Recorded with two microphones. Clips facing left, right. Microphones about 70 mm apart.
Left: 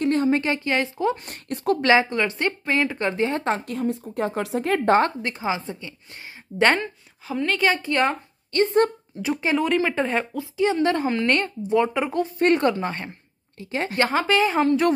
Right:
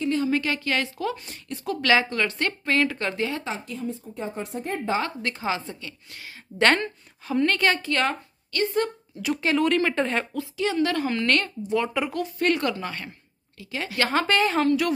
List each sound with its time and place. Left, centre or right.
0.0 s a sound: left
0.3 s speech: left
1.1 s speech: left
1.8 s speech: left
3.3 s speech: left
5.2 s speech: left
6.6 s a woman's voice: centre; by 14.1 s left
14.2 s a woman's voice: centre
14.5 s speech: left